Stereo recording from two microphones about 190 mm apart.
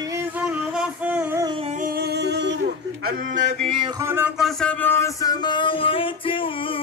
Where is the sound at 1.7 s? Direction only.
50° right (ahead or behind).